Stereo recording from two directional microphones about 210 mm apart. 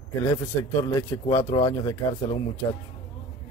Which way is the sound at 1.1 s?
15° left (ahead or behind).